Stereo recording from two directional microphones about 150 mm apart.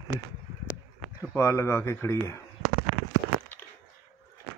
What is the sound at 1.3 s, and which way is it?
Speech, 15° left (ahead or behind).